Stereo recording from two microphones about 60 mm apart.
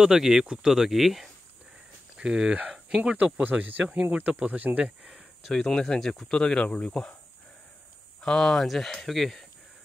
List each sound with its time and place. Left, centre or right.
0.0 s speech: centre
2.1 s speech: centre
5.5 s speech: centre
8.2 s speech: centre